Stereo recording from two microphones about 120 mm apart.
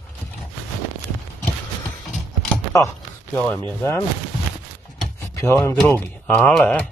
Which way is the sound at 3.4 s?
15° left (ahead or behind).